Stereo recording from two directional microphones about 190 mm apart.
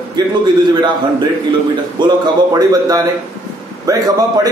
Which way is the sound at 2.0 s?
20° right (ahead or behind).